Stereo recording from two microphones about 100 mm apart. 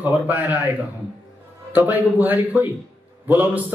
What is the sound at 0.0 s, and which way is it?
Speech, 15° right (ahead or behind).